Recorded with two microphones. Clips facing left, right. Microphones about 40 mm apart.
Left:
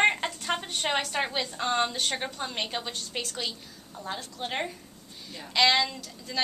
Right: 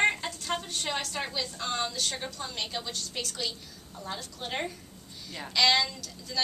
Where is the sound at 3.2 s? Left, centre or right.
Centre.